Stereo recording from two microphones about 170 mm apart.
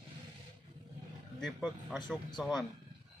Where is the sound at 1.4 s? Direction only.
Centre (ahead or behind).